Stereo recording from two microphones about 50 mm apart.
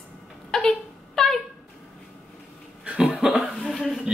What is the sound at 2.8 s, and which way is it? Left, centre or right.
Cough, centre.